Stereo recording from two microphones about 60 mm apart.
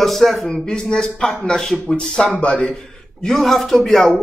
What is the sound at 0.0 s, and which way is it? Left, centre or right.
Speech, centre.